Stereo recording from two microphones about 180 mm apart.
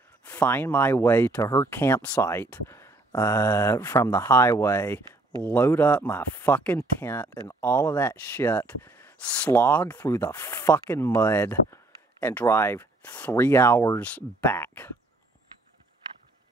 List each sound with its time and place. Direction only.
0.2 s speech: 10° left (ahead or behind)